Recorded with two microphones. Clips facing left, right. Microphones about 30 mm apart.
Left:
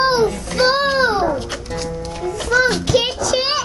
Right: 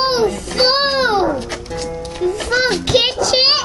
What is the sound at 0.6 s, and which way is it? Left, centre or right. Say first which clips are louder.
Music: even; right.